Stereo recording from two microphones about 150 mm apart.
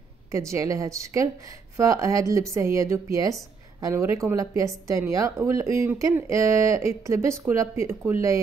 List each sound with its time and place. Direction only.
0.3 s speech: 20° right (ahead or behind)